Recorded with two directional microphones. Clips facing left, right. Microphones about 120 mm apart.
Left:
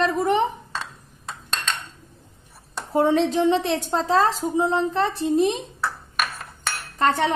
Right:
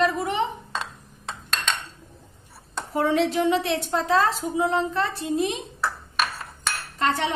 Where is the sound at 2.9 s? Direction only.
25° left (ahead or behind).